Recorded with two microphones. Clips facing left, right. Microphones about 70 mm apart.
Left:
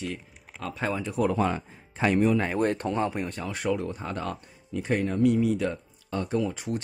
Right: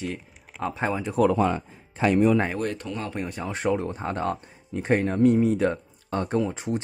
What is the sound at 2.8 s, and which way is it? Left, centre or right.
Speech, left.